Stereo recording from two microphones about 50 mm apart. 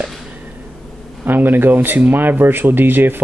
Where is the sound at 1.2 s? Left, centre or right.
Right.